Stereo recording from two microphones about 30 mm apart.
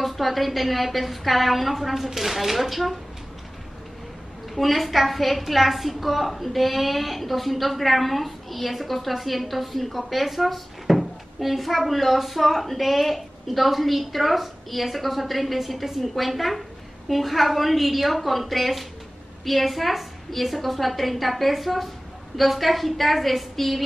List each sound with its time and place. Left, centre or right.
0.0 s a woman's voice: centre
4.6 s a woman's voice: centre